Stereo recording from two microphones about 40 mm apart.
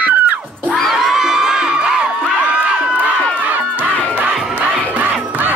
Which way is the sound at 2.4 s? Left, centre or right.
Right.